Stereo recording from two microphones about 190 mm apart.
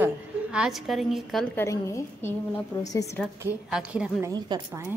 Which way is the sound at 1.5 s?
15° left (ahead or behind).